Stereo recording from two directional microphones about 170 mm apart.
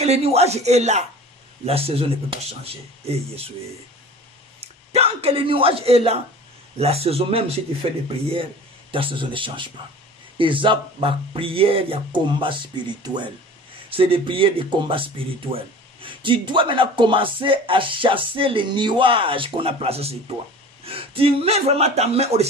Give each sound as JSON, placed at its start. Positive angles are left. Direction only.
{"t": 0.0, "sound": "speech", "side_deg": -40}
{"t": 4.6, "sound": "speech", "side_deg": -35}
{"t": 8.9, "sound": "speech", "side_deg": -30}